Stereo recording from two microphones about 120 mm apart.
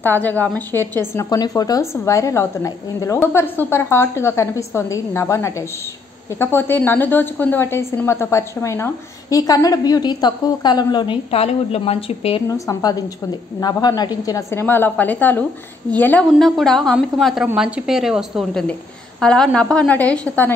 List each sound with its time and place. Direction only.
0.0 s a woman's voice: 15° left (ahead or behind)
1.3 s a woman's voice: 30° left (ahead or behind)
9.3 s a woman's voice: 30° left (ahead or behind)
11.2 s a woman's voice: 60° left (ahead or behind)
12.4 s a woman's voice: 30° left (ahead or behind)
16.3 s a woman's voice: centre (ahead or behind)